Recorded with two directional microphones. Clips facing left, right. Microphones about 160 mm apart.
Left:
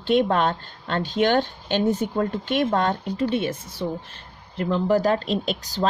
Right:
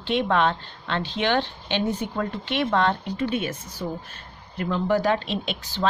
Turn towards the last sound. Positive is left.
turn(degrees=40)  # may be behind; listen again after turning